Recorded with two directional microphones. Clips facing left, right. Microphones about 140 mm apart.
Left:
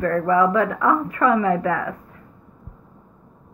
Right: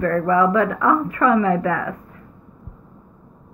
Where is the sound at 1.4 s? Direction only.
20° left (ahead or behind).